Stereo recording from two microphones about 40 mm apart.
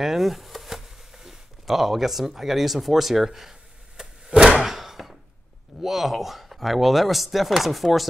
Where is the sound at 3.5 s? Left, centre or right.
Centre.